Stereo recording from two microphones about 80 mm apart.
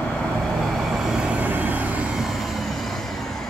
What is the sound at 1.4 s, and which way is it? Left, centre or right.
Vehicle, right.